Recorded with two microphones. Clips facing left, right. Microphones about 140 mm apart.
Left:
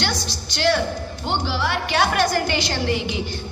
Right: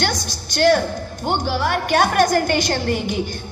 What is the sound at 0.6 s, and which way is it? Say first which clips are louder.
A woman's voice: right 5 dB; 45° right (ahead or behind).